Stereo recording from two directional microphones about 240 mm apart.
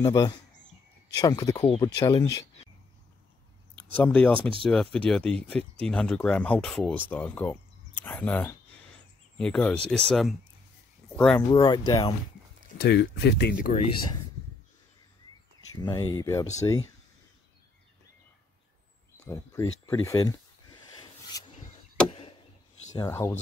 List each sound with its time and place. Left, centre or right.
0.0 s speech: centre
3.7 s speech: centre
4.4 s speech: right
4.6 s speech: centre
11.5 s speech: centre
12.7 s speech: left
15.7 s speech: centre
19.2 s speech: centre
19.9 s a sound: centre
22.9 s speech: centre